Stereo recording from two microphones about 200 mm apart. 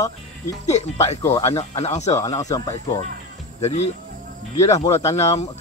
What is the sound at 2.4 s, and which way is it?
Speech, 15° left (ahead or behind).